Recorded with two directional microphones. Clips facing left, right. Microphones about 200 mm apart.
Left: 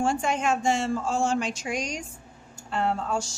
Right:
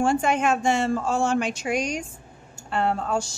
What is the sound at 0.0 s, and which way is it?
Speech, 60° right (ahead or behind).